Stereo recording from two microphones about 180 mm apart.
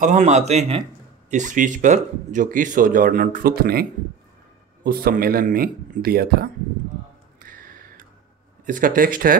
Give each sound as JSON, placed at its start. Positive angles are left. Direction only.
{"t": 0.0, "sound": "speech", "side_deg": -40}
{"t": 4.8, "sound": "speech", "side_deg": -55}
{"t": 7.3, "sound": "music", "side_deg": -50}
{"t": 8.6, "sound": "speech", "side_deg": -45}